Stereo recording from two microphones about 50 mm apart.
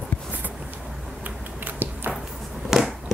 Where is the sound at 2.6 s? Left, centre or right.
Centre.